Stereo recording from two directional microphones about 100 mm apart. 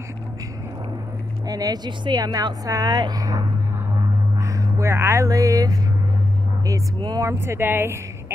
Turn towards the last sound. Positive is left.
turn(degrees=-20)  # may be behind; listen again after turning